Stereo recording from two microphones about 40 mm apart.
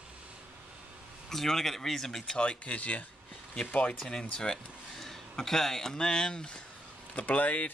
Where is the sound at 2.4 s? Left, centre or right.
Left.